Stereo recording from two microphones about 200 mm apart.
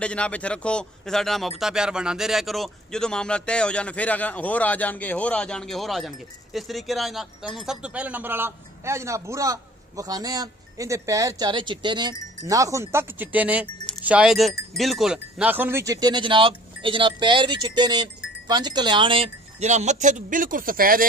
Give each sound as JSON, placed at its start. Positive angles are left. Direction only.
{"t": 0.0, "sound": "a man's voice", "side_deg": 5}